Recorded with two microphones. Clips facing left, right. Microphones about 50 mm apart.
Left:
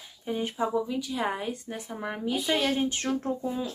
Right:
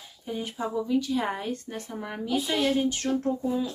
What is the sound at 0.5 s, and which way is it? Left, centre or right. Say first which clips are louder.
Speech: right 4 dB; centre.